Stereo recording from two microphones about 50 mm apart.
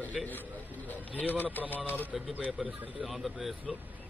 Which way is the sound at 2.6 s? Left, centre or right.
Centre.